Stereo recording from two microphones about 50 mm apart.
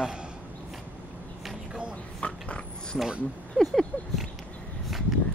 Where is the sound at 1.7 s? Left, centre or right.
Right.